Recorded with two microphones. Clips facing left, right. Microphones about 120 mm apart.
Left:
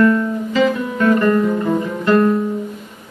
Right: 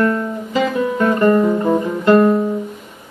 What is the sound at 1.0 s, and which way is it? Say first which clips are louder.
Guitar: even; 25° right (ahead or behind).